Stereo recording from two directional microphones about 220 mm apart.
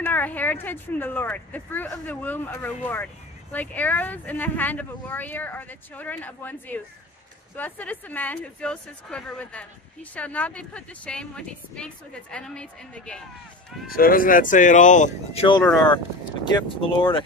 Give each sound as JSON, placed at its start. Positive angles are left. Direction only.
{"t": 0.0, "sound": "a woman's voice", "side_deg": 5}
{"t": 13.9, "sound": "speech", "side_deg": 40}
{"t": 15.4, "sound": "speech", "side_deg": 20}